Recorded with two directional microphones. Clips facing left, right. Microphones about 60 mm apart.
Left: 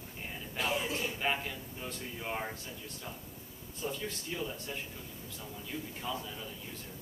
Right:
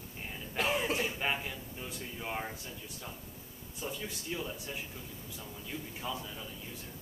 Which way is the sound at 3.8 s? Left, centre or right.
Centre.